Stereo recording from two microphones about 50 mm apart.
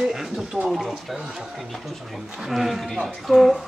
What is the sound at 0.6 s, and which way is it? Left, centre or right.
Speech, centre.